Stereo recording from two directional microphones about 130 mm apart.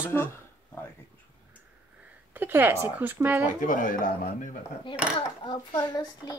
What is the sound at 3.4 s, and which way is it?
Speech, 90° left.